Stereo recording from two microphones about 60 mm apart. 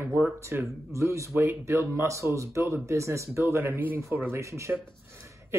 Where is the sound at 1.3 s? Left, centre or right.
Right.